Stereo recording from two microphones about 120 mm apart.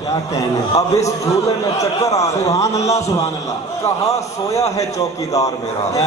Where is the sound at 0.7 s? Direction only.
25° left (ahead or behind).